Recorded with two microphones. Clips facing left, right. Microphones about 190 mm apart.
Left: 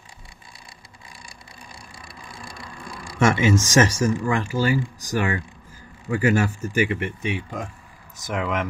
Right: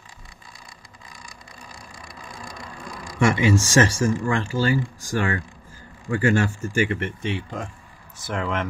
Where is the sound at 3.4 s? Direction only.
20° left (ahead or behind).